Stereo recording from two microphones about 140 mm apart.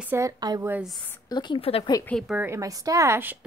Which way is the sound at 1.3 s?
30° left (ahead or behind).